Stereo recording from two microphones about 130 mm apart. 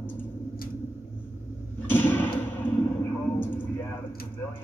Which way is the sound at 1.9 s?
15° left (ahead or behind).